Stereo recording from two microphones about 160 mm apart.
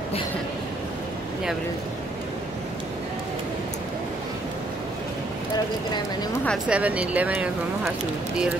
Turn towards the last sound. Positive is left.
turn(degrees=-10)  # may be behind; listen again after turning